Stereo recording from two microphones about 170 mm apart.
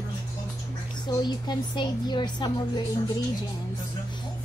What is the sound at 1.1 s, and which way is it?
A woman's voice, 25° left (ahead or behind).